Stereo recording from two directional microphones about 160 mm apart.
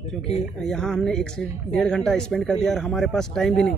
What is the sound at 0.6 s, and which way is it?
Speech, 5° left (ahead or behind).